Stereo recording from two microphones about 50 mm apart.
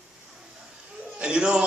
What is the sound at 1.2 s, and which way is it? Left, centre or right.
Speech, centre.